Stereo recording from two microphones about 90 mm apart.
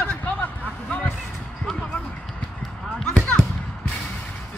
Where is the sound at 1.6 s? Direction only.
10° left (ahead or behind).